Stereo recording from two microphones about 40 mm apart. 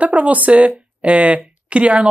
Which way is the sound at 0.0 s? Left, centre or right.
Right.